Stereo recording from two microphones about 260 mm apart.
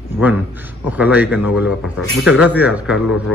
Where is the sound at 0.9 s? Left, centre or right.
Centre.